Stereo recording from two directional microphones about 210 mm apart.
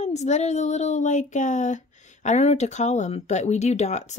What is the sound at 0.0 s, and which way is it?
Speech, 35° left (ahead or behind).